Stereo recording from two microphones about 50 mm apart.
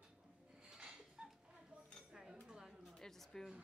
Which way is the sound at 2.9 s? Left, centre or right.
Centre.